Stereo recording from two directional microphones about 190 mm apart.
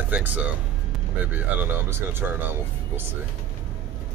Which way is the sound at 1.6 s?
10° right (ahead or behind).